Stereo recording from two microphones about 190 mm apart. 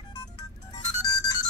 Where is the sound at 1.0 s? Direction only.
20° left (ahead or behind).